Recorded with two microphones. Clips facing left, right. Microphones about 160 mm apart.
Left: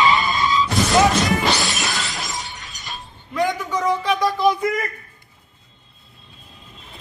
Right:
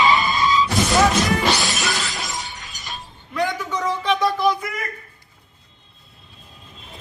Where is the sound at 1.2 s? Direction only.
Centre (ahead or behind).